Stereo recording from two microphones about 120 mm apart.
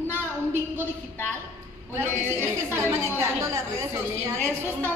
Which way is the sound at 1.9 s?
20° right (ahead or behind).